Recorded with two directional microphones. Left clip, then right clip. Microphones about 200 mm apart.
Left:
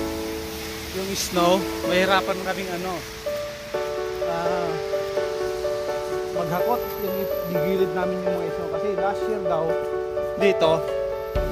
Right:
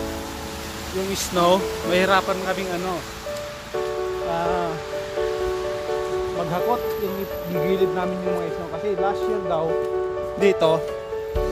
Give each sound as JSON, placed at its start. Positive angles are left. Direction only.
{"t": 1.3, "sound": "speech", "side_deg": 10}
{"t": 7.6, "sound": "speech", "side_deg": 25}
{"t": 10.4, "sound": "speech", "side_deg": 10}